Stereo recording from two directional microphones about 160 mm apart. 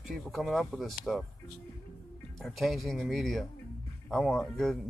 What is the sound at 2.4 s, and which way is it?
Speech, centre (ahead or behind).